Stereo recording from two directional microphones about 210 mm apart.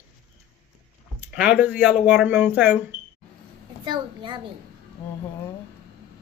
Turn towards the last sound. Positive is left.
turn(degrees=-20)  # may be behind; listen again after turning